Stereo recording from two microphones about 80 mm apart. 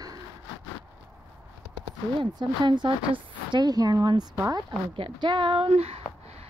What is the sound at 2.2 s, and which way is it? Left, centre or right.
Speech, right.